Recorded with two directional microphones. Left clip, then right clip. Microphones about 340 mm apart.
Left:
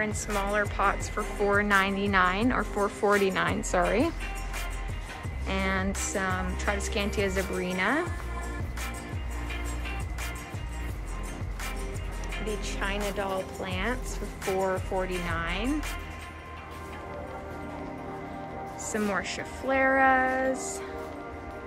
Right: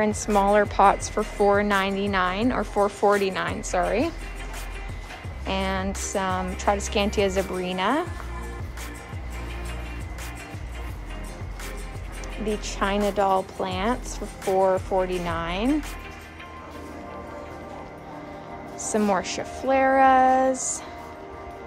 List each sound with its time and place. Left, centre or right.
0.0 s a woman's voice: centre
5.5 s speech: centre
12.6 s speech: centre
18.9 s speech: centre